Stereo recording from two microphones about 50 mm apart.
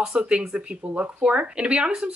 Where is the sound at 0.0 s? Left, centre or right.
Centre.